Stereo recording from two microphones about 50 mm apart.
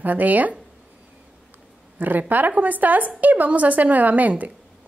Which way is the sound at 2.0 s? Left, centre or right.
Right.